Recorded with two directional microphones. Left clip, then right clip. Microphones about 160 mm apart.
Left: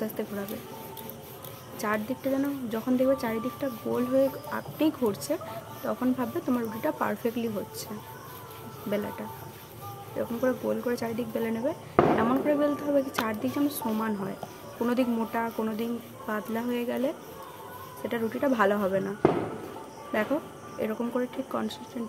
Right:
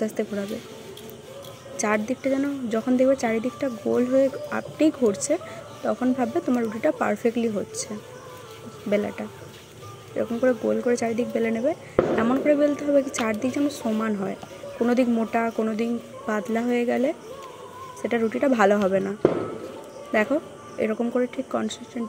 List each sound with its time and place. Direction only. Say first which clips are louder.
0.2 s a woman's voice: right 6 dB; 25° right (ahead or behind)
1.8 s a woman's voice: right 6 dB; 25° right (ahead or behind)
8.9 s a woman's voice: right 7 dB; 25° right (ahead or behind)
20.8 s a woman's voice: right 6 dB; 25° right (ahead or behind)